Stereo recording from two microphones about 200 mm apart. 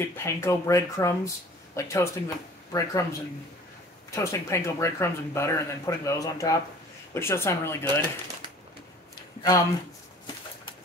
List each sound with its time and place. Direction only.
0.0 s speech: 10° left (ahead or behind)